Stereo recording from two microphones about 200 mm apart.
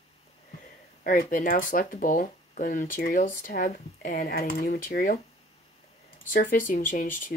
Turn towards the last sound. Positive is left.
turn(degrees=40)  # may be behind; listen again after turning